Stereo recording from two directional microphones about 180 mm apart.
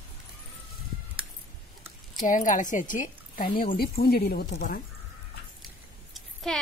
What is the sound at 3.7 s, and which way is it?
Speech, 60° left (ahead or behind).